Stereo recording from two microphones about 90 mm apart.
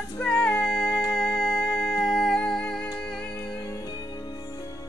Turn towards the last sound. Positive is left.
turn(degrees=45)  # may be behind; listen again after turning